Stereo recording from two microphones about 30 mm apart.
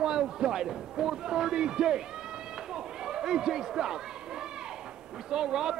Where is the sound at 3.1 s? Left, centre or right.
Centre.